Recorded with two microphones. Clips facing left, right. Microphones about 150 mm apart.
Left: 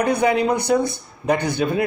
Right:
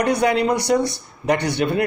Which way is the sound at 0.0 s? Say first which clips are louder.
Even; 70° right (ahead or behind).